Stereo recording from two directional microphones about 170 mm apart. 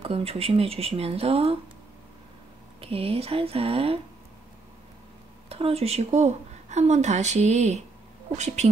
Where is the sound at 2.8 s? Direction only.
35° right (ahead or behind).